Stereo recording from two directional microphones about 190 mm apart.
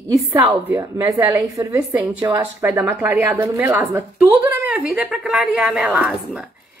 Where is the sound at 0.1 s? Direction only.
20° right (ahead or behind).